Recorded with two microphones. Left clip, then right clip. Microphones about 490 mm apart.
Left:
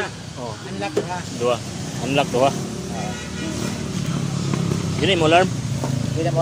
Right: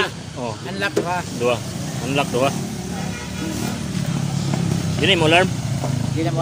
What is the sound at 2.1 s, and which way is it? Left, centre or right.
Speech, left.